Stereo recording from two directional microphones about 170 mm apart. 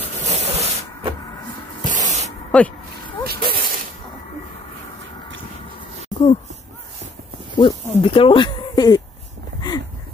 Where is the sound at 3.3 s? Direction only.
60° right (ahead or behind).